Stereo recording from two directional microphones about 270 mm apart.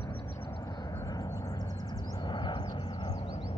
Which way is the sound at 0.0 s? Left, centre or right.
Centre.